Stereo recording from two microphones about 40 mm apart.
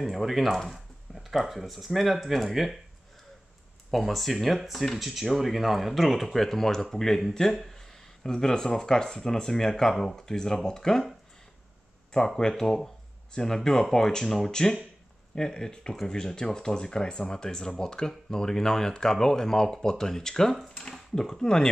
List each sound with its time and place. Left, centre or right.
0.0 s speech: centre
3.9 s speech: centre
12.4 s speech: centre